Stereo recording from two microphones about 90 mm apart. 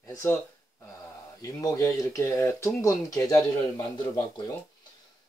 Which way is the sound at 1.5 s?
40° left (ahead or behind).